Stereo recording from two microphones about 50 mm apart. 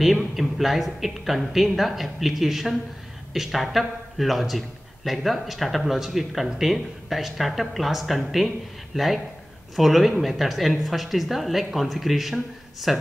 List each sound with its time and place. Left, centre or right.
0.4 s a man's voice: centre